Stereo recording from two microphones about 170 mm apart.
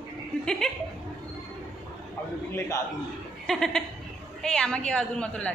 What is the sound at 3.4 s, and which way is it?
A woman's voice, 5° left (ahead or behind).